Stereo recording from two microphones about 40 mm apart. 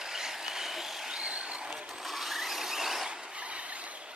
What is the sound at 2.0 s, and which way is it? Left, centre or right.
Vehicle, centre.